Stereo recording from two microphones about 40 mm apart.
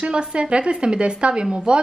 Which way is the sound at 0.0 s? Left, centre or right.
Right.